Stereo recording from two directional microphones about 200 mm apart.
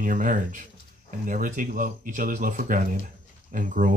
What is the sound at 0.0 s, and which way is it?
Speech, 40° right (ahead or behind).